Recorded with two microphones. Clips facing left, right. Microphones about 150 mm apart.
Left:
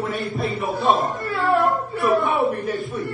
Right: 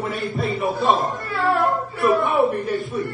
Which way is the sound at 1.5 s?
Centre (ahead or behind).